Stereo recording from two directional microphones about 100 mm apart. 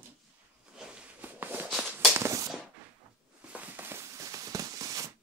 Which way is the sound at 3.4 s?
15° right (ahead or behind).